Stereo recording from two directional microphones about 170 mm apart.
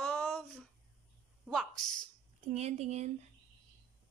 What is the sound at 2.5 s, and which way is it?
Speech, 40° right (ahead or behind).